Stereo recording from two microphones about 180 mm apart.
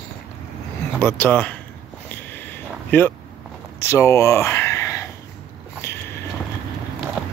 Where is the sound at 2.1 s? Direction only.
10° left (ahead or behind).